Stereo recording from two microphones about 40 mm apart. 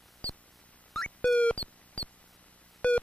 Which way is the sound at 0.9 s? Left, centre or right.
Centre.